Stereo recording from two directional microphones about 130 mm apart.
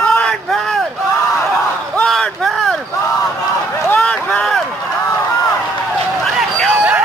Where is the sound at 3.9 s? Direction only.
10° left (ahead or behind).